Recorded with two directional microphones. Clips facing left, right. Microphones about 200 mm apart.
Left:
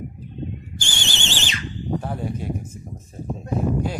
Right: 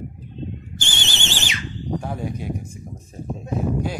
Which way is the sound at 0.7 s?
20° right (ahead or behind).